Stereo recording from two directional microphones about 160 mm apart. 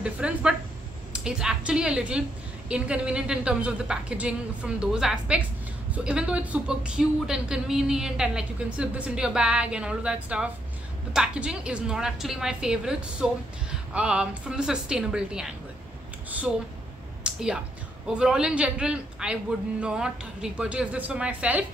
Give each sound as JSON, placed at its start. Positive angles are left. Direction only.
{"t": 0.0, "sound": "a woman's voice", "side_deg": -5}
{"t": 17.2, "sound": "a sound", "side_deg": -5}
{"t": 18.0, "sound": "a woman's voice", "side_deg": -5}